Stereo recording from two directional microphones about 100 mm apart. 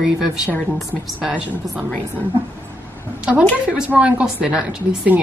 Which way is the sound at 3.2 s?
15° right (ahead or behind).